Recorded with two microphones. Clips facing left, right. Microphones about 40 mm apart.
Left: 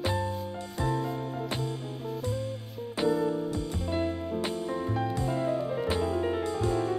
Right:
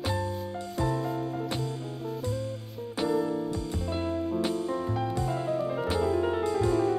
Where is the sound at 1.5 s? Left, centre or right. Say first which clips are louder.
Even; centre.